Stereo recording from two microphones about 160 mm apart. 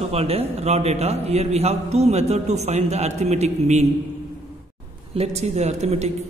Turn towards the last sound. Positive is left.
turn(degrees=-45)  # may be behind; listen again after turning